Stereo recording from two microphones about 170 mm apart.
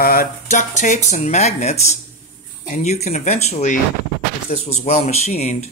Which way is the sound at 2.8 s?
40° left (ahead or behind).